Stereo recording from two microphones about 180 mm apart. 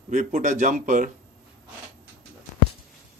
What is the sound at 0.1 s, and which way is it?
A man's voice, 45° right (ahead or behind).